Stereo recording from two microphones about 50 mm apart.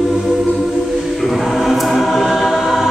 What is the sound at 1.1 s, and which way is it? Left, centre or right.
Choir, centre.